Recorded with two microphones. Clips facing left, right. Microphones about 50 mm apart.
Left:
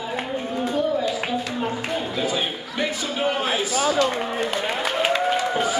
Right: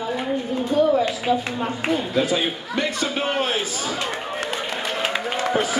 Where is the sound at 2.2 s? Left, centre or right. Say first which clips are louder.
Right 3 dB; right.